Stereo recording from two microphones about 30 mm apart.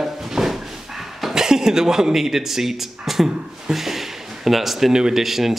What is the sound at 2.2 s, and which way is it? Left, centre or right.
Speech, centre.